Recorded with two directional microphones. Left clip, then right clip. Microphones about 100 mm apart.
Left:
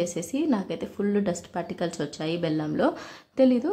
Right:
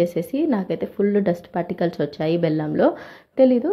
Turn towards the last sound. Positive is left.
turn(degrees=-20)  # may be behind; listen again after turning